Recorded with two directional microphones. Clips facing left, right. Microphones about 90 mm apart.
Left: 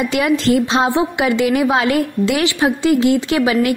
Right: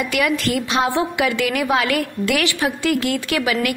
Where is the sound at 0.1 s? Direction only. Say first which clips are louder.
Left 5 dB; 25° left (ahead or behind).